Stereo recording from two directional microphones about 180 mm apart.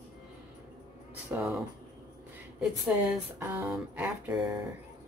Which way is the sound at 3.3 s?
10° right (ahead or behind).